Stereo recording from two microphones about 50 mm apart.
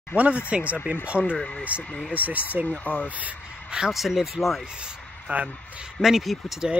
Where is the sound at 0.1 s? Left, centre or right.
Left.